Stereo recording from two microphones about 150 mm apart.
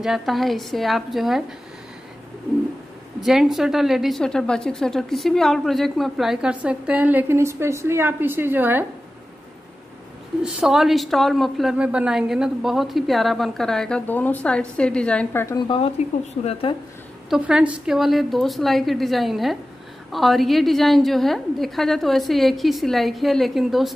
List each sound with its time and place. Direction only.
0.0 s a woman's voice: centre (ahead or behind)
3.2 s a woman's voice: 5° right (ahead or behind)
10.4 s a woman's voice: 5° right (ahead or behind)
15.4 s speech: 30° left (ahead or behind)
16.4 s speech: 45° left (ahead or behind)
17.3 s a woman's voice: 5° right (ahead or behind)